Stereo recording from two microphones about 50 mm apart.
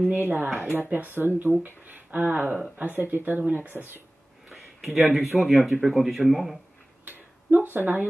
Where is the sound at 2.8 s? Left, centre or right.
Right.